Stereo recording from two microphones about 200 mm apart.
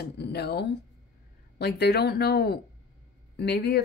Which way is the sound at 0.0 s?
55° left (ahead or behind).